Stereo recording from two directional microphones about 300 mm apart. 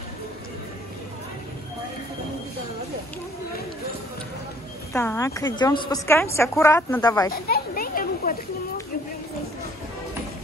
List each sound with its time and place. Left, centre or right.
4.9 s a woman's voice: centre
7.5 s children playing: left